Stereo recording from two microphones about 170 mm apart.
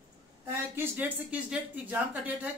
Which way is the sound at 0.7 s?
10° right (ahead or behind).